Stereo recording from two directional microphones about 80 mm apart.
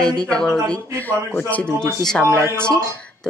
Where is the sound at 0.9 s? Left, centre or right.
Left.